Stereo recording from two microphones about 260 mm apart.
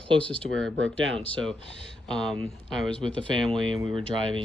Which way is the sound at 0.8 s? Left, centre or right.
Right.